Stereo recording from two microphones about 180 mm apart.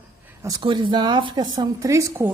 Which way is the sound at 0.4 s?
20° right (ahead or behind).